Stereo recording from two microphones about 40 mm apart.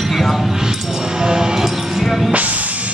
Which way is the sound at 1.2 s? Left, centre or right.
Centre.